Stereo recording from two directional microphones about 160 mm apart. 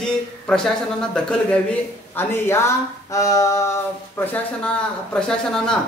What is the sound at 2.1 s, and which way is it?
Speech, 15° left (ahead or behind).